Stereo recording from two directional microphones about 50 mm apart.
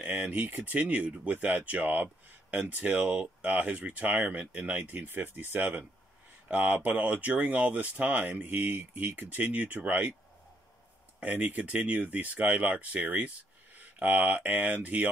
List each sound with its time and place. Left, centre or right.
0.0 s speech: right
11.1 s speech: right